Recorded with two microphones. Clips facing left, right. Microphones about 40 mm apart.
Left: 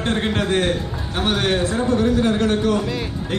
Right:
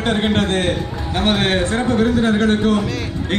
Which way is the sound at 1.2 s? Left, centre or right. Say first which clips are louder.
Right 3 dB; right.